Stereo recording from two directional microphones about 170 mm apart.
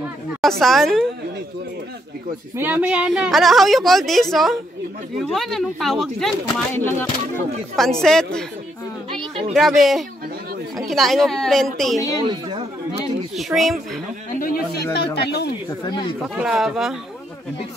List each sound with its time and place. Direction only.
0.4 s a woman's voice: centre (ahead or behind)
2.5 s a woman's voice: 10° right (ahead or behind)
6.4 s speech: 15° left (ahead or behind)
7.7 s a woman's voice: centre (ahead or behind)
9.2 s a sound: 35° right (ahead or behind)
9.5 s a woman's voice: centre (ahead or behind)
12.2 s speech: 30° right (ahead or behind)
13.4 s a woman's voice: centre (ahead or behind)
14.4 s a sound: 60° left (ahead or behind)
15.1 s speech: 75° left (ahead or behind)
16.2 s a woman's voice: centre (ahead or behind)